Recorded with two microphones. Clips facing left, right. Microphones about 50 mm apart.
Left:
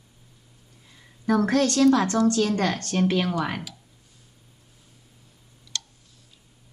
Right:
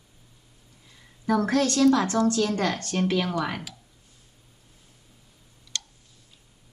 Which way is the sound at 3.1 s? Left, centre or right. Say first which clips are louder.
Left 1 dB; centre.